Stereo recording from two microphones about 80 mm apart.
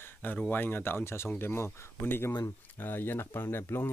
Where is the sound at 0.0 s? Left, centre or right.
Left.